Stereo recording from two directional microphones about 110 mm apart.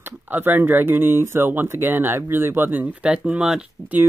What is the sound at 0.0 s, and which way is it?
Speech, 20° right (ahead or behind).